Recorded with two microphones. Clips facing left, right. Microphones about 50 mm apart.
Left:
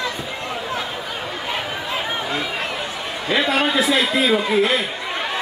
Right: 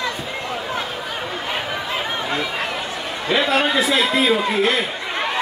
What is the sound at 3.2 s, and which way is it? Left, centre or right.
Speech, centre.